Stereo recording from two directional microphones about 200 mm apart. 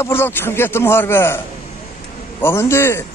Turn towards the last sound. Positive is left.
turn(degrees=15)  # may be behind; listen again after turning